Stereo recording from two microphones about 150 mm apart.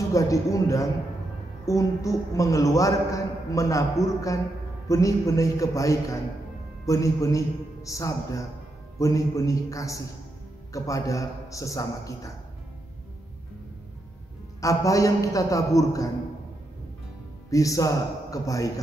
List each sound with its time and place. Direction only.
0.1 s a man's voice: 20° left (ahead or behind)
14.6 s a man's voice: 20° left (ahead or behind)
17.5 s a man's voice: 20° left (ahead or behind)